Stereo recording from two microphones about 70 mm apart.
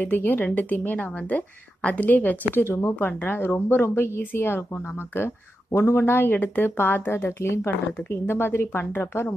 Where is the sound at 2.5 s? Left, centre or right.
Left.